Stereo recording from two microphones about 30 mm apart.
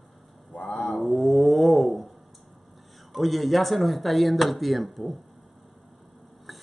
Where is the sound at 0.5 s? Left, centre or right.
Left.